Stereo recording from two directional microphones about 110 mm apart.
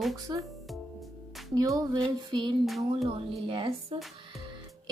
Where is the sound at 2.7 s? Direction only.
Centre (ahead or behind).